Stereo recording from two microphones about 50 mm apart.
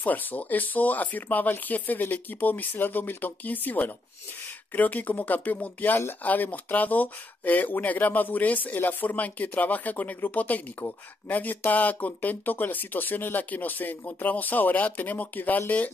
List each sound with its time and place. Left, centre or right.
0.0 s speech: left